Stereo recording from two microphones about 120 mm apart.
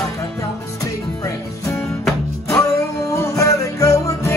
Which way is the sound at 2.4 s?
25° left (ahead or behind).